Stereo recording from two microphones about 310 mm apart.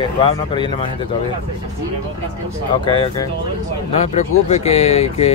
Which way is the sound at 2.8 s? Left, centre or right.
Centre.